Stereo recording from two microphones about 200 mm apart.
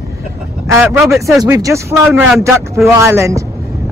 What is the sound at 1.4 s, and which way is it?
Speech, 15° right (ahead or behind).